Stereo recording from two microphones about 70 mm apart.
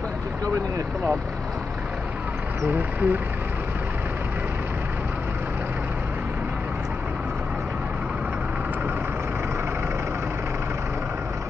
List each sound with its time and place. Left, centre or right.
2.7 s speech: right